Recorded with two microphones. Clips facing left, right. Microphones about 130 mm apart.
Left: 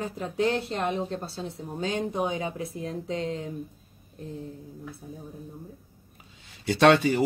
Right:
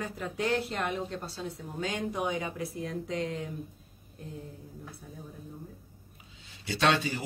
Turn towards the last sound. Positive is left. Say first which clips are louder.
# left 8 dB
turn(degrees=60)  # may be behind; listen again after turning